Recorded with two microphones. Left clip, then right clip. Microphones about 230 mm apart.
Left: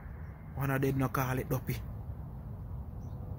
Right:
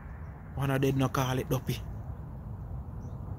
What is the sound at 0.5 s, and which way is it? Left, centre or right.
Speech, centre.